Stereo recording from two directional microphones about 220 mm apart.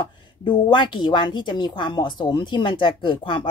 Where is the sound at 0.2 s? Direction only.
20° left (ahead or behind).